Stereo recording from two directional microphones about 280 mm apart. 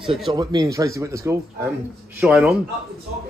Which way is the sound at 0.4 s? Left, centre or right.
Centre.